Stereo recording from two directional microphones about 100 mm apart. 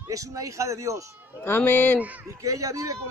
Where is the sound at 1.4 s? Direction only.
20° left (ahead or behind).